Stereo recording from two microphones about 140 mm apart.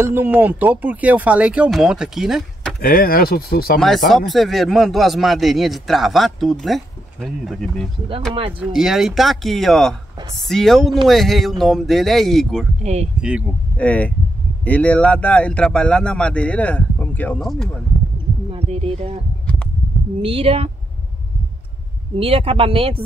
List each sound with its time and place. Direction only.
0.0 s speech: 15° right (ahead or behind)
2.8 s speech: 90° left
4.3 s speech: centre (ahead or behind)
12.8 s a woman's voice: 50° right (ahead or behind)
13.7 s speech: 10° left (ahead or behind)
18.5 s speech: 45° right (ahead or behind)
20.2 s a woman's voice: 45° right (ahead or behind)
22.2 s speech: 45° right (ahead or behind)